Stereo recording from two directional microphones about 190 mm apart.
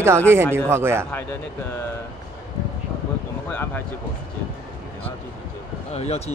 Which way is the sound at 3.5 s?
10° left (ahead or behind).